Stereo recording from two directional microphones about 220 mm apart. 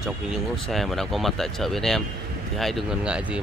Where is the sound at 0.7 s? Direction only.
Centre (ahead or behind).